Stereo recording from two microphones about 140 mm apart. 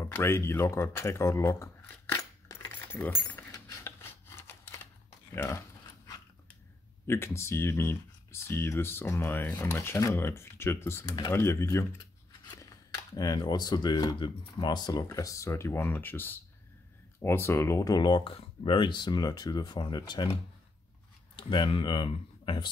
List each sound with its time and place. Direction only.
0.0 s a sound: 20° left (ahead or behind)
5.3 s speech: 20° left (ahead or behind)
7.1 s speech: 20° left (ahead or behind)
11.1 s speech: 30° left (ahead or behind)
11.3 s speech: 20° left (ahead or behind)
21.4 s speech: 35° left (ahead or behind)